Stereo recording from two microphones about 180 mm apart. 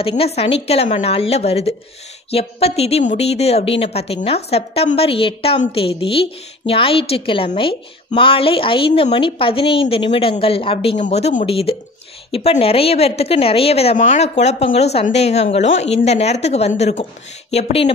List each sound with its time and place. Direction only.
0.0 s a woman's voice: 35° left (ahead or behind)